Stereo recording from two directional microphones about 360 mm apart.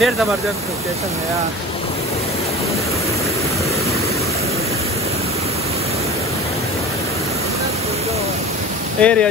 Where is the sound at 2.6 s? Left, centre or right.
Centre.